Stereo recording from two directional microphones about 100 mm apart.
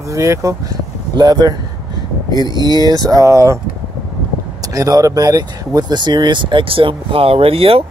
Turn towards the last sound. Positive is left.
turn(degrees=-70)  # may be behind; listen again after turning